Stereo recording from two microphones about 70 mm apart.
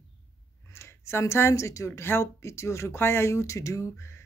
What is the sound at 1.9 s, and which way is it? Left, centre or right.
Speech, left.